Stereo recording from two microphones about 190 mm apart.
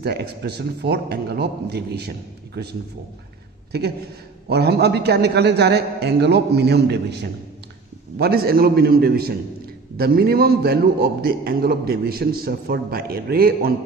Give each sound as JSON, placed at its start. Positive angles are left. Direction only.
{"t": 0.0, "sound": "a man's voice", "side_deg": -60}
{"t": 3.7, "sound": "a man's voice", "side_deg": -60}